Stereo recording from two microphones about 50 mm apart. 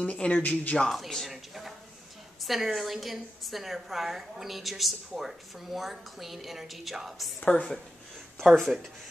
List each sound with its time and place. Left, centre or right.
0.0 s speech: left
0.9 s a sound: centre
2.4 s a woman's voice: centre
7.5 s speech: left
8.5 s a woman's voice: centre